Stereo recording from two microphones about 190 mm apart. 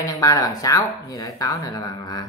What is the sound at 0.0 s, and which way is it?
Speech, 20° left (ahead or behind).